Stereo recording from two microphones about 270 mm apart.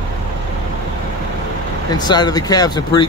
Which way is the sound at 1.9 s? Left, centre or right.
Centre.